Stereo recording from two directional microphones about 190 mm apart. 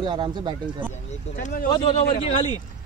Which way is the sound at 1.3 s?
50° left (ahead or behind).